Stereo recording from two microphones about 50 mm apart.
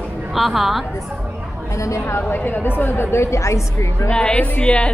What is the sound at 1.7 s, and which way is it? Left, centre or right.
Speech, left.